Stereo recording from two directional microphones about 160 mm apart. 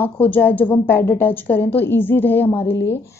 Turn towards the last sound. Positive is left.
turn(degrees=15)  # may be behind; listen again after turning